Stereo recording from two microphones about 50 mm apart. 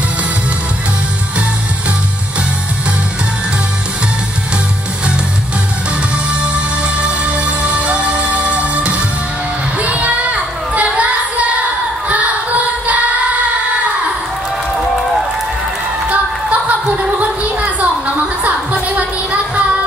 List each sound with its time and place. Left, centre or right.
7.0 s music: right
9.8 s child singing: right
12.1 s music: right
16.1 s a sound: right
18.4 s music: right